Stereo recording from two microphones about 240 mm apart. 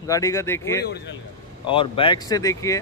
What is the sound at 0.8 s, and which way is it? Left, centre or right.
Speech, left.